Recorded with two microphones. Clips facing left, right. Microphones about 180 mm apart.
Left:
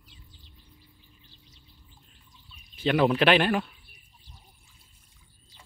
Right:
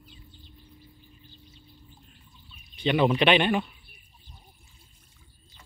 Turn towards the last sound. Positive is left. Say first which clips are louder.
# even
turn(degrees=0)  # may be behind; listen again after turning